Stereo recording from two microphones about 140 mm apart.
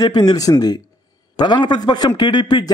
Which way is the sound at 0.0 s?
30° left (ahead or behind).